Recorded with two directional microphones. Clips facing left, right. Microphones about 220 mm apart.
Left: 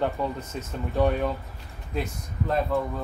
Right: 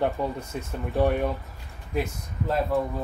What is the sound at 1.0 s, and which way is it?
Speech, 15° right (ahead or behind).